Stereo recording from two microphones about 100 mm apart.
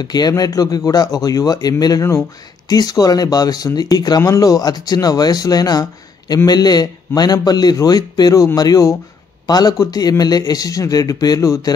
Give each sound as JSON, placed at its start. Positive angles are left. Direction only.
{"t": 0.0, "sound": "speech", "side_deg": 45}